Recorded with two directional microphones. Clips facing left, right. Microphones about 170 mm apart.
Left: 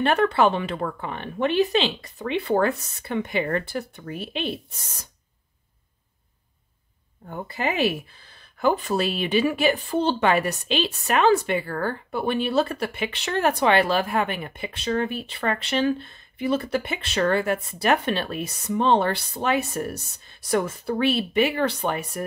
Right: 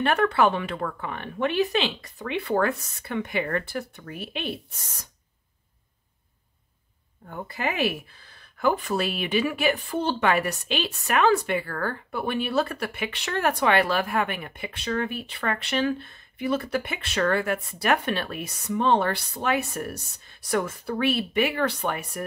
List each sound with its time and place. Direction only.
0.0 s a woman's voice: 30° left (ahead or behind)
7.2 s a woman's voice: 25° left (ahead or behind)